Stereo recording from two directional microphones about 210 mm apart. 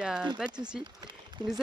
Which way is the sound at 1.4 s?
20° right (ahead or behind).